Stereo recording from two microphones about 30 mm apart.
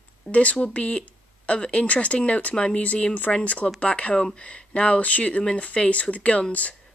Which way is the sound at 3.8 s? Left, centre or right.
Left.